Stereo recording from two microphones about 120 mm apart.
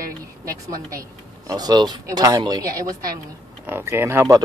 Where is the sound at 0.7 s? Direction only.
30° right (ahead or behind).